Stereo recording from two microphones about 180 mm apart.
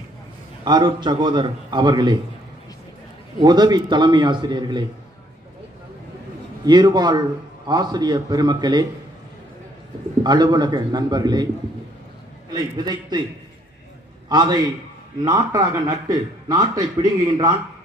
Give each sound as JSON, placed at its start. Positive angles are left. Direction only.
{"t": 0.7, "sound": "a man's voice", "side_deg": -25}
{"t": 3.3, "sound": "a man's voice", "side_deg": -25}
{"t": 6.6, "sound": "a man's voice", "side_deg": -25}
{"t": 10.2, "sound": "a man's voice", "side_deg": -25}
{"t": 12.5, "sound": "a man's voice", "side_deg": -25}
{"t": 14.3, "sound": "a man's voice", "side_deg": -25}